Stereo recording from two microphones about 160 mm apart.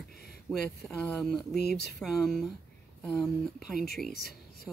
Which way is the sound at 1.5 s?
90° left.